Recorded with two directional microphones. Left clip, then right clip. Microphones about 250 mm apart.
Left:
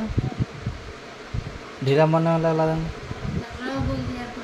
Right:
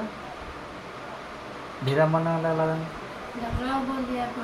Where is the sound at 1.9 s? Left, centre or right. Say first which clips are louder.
Left 3 dB; left.